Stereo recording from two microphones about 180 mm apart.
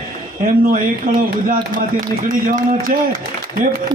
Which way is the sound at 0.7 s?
50° right (ahead or behind).